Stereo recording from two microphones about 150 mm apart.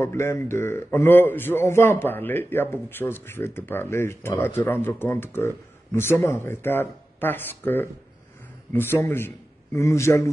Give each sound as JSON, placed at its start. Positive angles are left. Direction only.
{"t": 0.0, "sound": "a man's voice", "side_deg": 15}